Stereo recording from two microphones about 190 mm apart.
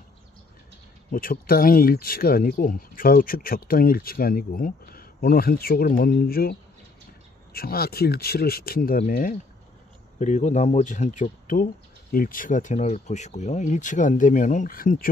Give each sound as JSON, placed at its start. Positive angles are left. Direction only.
{"t": 1.1, "sound": "speech", "side_deg": 50}
{"t": 7.5, "sound": "speech", "side_deg": 55}